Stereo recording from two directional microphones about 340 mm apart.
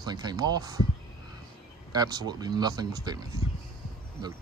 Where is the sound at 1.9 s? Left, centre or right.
Centre.